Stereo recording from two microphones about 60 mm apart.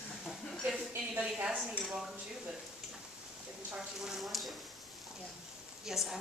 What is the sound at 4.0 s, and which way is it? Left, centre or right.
Speech, centre.